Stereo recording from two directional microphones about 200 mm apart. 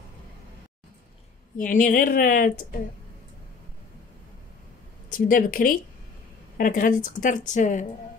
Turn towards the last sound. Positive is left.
turn(degrees=35)  # may be behind; listen again after turning